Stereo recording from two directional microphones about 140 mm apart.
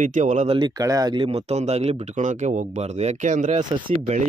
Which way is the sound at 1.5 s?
50° right (ahead or behind).